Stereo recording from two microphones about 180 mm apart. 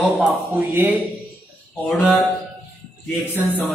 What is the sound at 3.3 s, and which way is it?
Music, 10° left (ahead or behind).